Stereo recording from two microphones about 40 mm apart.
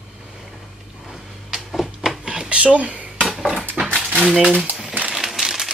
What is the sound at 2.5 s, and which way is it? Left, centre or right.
Speech, right.